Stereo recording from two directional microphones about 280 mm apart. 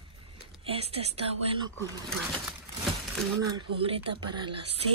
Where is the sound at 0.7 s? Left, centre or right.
Right.